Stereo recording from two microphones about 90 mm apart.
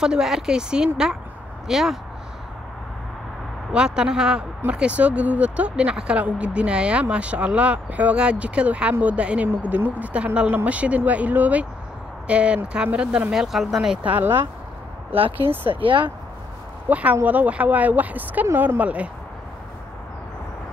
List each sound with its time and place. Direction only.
0.0 s speech: 5° right (ahead or behind)
3.7 s speech: 10° right (ahead or behind)
14.0 s speech: 20° right (ahead or behind)
15.8 s speech: 65° right (ahead or behind)
16.9 s speech: 15° right (ahead or behind)